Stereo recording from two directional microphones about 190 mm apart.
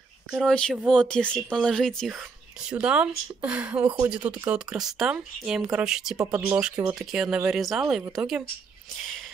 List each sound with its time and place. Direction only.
0.3 s speech: centre (ahead or behind)
6.1 s speech: 15° right (ahead or behind)
7.0 s speech: 5° right (ahead or behind)